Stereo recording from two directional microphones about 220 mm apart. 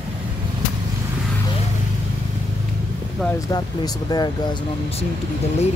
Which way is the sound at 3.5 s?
20° left (ahead or behind).